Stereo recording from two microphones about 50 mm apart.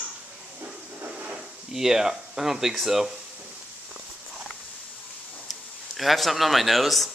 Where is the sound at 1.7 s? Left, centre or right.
Centre.